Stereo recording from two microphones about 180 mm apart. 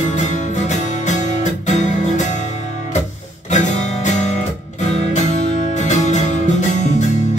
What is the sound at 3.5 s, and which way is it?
Music, 40° left (ahead or behind).